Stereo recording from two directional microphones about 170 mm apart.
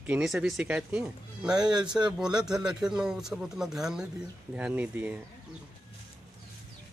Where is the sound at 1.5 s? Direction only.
25° right (ahead or behind).